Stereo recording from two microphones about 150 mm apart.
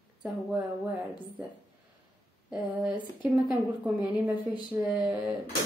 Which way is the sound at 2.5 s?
5° right (ahead or behind).